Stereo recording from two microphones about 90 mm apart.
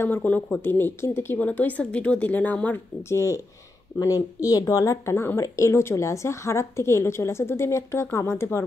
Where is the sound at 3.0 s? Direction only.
30° left (ahead or behind).